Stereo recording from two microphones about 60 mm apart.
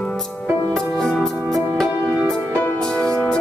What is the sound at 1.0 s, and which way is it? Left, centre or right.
Music, centre.